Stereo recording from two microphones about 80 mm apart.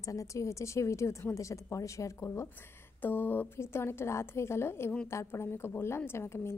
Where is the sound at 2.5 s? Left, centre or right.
Left.